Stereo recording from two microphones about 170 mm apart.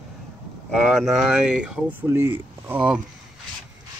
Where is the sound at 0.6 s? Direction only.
Centre (ahead or behind).